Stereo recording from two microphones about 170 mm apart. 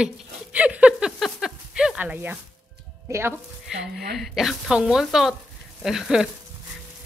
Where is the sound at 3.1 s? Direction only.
15° right (ahead or behind).